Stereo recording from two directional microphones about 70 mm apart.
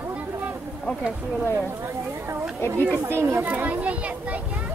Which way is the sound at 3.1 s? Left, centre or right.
Right.